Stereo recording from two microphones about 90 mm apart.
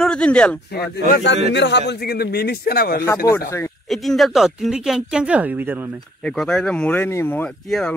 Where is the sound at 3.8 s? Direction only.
Centre (ahead or behind); by 5.9 s 20° right (ahead or behind).